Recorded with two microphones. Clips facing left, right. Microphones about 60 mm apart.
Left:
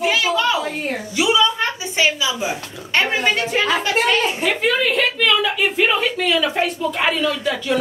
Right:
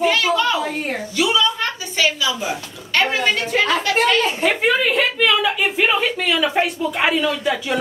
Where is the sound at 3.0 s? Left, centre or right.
Centre.